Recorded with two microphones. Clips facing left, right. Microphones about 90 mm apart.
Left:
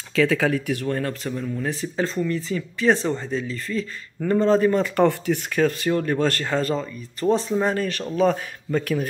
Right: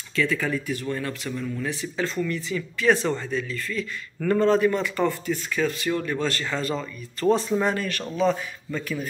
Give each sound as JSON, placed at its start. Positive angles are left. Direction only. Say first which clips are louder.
{"t": 0.3, "sound": "speech", "louder": "left 5 dB", "side_deg": 80}
{"t": 4.6, "sound": "speech", "louder": "left 3 dB", "side_deg": 40}
{"t": 4.9, "sound": "speech", "louder": "left 5 dB", "side_deg": 65}
{"t": 6.8, "sound": "speech", "louder": "even", "side_deg": 20}
{"t": 7.6, "sound": "speech", "louder": "left 2 dB", "side_deg": 35}
{"t": 8.2, "sound": "speech", "louder": "left 3 dB", "side_deg": 50}